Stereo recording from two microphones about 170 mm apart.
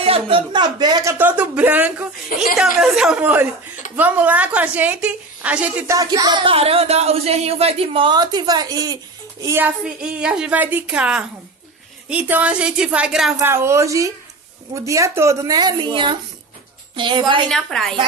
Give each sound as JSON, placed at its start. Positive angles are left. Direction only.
{"t": 0.0, "sound": "speech", "side_deg": -35}
{"t": 1.1, "sound": "a woman's voice", "side_deg": -10}
{"t": 5.9, "sound": "speech", "side_deg": -20}
{"t": 10.2, "sound": "a woman's voice", "side_deg": -5}
{"t": 17.5, "sound": "a woman's voice", "side_deg": 5}